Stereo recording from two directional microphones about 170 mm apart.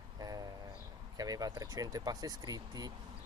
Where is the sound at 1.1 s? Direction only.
20° right (ahead or behind).